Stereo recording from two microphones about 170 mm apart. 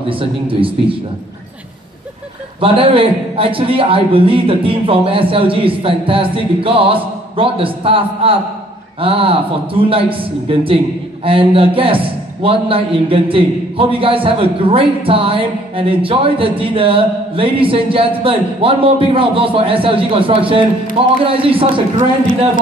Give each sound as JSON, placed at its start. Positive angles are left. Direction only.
{"t": 0.1, "sound": "a man's voice", "side_deg": -30}
{"t": 2.6, "sound": "a man's voice", "side_deg": -30}